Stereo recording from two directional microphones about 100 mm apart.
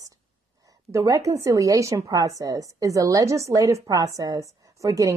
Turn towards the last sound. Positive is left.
turn(degrees=-35)  # may be behind; listen again after turning